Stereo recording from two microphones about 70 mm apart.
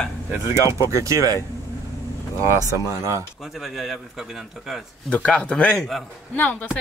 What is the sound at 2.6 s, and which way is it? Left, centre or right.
Speech, right.